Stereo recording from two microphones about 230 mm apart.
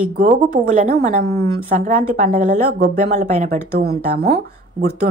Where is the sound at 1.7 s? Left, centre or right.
Right.